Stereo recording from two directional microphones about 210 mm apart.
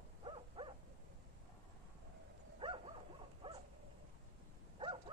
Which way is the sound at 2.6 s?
25° right (ahead or behind).